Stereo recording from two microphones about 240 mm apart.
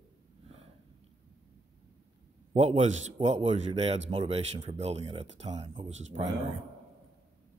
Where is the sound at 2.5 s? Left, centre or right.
Right.